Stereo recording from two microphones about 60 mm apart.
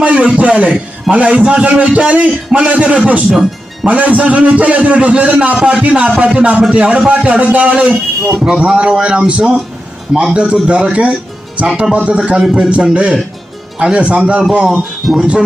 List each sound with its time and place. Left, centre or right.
0.0 s a man's voice: centre
7.2 s a man's voice: right